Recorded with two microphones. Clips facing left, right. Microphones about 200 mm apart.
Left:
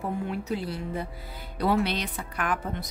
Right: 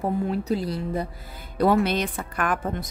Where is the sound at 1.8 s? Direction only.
50° right (ahead or behind).